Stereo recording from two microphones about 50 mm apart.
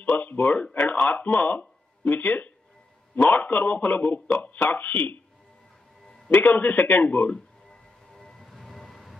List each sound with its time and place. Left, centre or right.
0.1 s a sound: left
0.4 s speech: left
6.3 s speech: left
7.3 s music: centre